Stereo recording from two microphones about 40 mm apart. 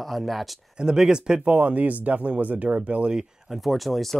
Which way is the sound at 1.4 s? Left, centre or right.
Right.